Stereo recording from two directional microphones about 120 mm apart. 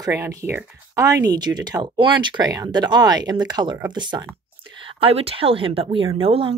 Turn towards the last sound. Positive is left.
turn(degrees=-50)  # may be behind; listen again after turning